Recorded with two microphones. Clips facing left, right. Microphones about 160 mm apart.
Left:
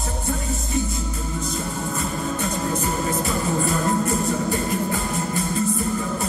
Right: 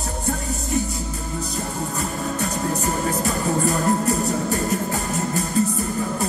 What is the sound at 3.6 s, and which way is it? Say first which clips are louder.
Music: right 2 dB; 40° right (ahead or behind).